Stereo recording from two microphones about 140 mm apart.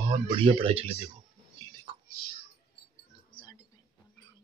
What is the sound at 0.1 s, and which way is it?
Speech, 35° right (ahead or behind).